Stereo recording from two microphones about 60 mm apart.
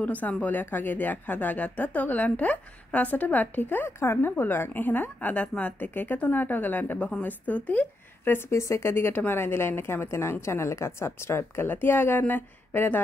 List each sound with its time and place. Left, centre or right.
0.0 s speech: left
4.0 s a woman's voice: left
8.3 s a woman's voice: left
8.8 s a woman's voice: left